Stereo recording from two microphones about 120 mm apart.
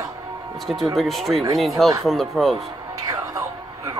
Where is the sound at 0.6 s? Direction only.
Centre (ahead or behind).